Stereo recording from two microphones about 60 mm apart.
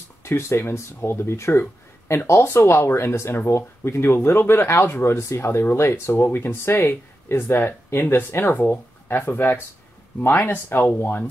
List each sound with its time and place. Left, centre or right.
0.2 s speech: left